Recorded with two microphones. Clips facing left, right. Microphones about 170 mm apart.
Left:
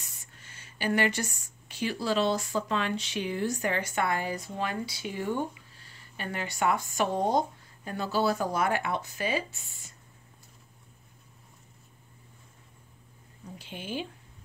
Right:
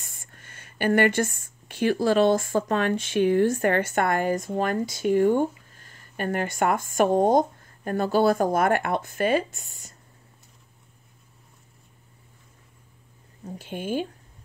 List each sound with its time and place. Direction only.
0.0 s speech: 50° right (ahead or behind)
13.6 s speech: 50° right (ahead or behind)